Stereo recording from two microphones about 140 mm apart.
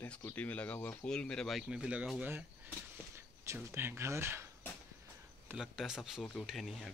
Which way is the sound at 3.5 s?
15° right (ahead or behind).